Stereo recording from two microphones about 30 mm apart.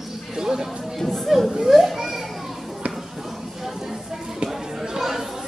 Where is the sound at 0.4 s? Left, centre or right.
Centre.